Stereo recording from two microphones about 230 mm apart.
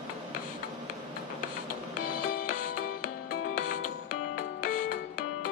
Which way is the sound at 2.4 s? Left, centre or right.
Left.